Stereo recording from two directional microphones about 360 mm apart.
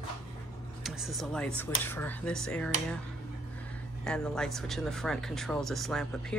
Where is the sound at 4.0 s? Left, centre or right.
Centre.